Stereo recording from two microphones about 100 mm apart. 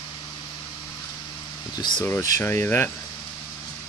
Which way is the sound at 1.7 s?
45° left (ahead or behind).